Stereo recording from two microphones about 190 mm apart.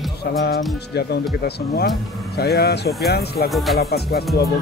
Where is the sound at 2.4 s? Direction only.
55° left (ahead or behind).